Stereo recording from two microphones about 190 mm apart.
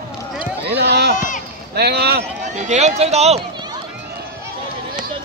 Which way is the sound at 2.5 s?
35° right (ahead or behind).